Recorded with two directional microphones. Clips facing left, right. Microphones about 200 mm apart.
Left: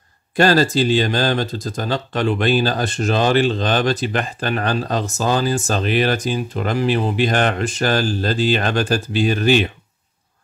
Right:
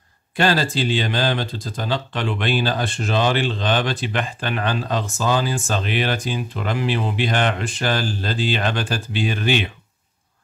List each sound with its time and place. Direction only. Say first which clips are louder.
0.4 s speech: left 5 dB; 40° left (ahead or behind)